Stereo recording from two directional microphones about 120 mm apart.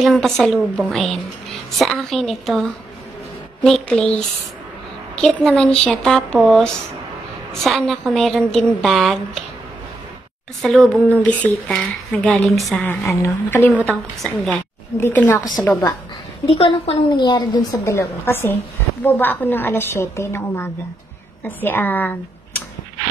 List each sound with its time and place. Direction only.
0.0 s a woman's voice: centre (ahead or behind)
3.6 s a woman's voice: 5° left (ahead or behind)
10.6 s a woman's voice: centre (ahead or behind)
11.1 s a woman's voice: 10° left (ahead or behind)
12.7 s a woman's voice: 15° left (ahead or behind)
13.8 s a woman's voice: 5° left (ahead or behind)
15.1 s a woman's voice: 20° left (ahead or behind)
16.4 s a woman's voice: 55° left (ahead or behind)
17.2 s a woman's voice: 35° left (ahead or behind)
17.8 s a woman's voice: 20° left (ahead or behind)